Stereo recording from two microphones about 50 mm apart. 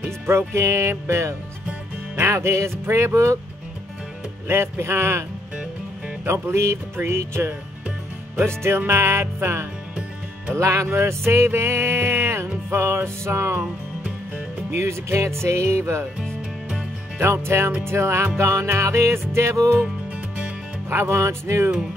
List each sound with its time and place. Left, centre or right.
0.3 s music: right
4.5 s music: right
6.2 s music: right
8.6 s music: right
10.5 s music: right
10.9 s music: right
13.6 s music: right
14.7 s music: right
17.2 s music: right
20.9 s music: right